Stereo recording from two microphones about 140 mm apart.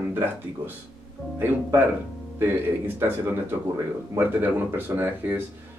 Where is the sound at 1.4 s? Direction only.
15° right (ahead or behind).